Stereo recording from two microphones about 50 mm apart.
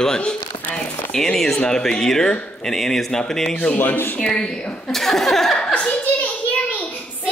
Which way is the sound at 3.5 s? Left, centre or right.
Left.